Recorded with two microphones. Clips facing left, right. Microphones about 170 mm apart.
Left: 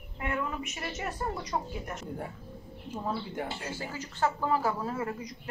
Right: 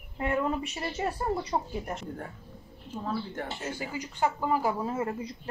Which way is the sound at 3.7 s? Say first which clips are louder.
Right 2 dB; 15° right (ahead or behind).